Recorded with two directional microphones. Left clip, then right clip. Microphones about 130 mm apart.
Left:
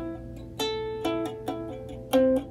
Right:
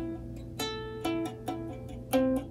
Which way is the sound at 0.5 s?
15° left (ahead or behind).